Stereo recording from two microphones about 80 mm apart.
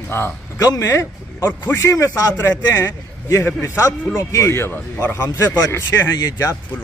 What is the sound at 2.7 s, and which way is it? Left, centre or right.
A man's voice, left.